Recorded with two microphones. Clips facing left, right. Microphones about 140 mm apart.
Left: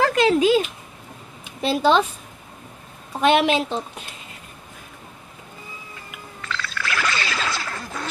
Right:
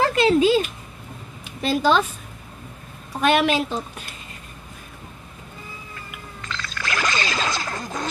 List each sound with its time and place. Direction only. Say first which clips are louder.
0.0 s a sound: left 1 dB; 5° right (ahead or behind)
0.3 s speech: right 2 dB; 15° left (ahead or behind)
1.6 s a woman's voice: left 1 dB; 25° left (ahead or behind)
3.2 s a woman's voice: left 1 dB; 20° left (ahead or behind)
6.4 s music: left 2 dB; 20° right (ahead or behind)